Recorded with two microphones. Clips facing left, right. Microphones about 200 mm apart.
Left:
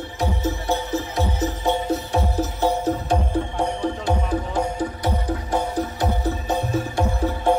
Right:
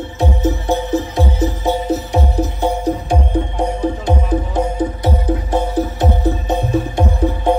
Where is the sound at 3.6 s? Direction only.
20° right (ahead or behind).